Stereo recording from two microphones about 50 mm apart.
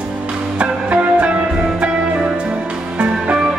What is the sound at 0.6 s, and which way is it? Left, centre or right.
Music, right.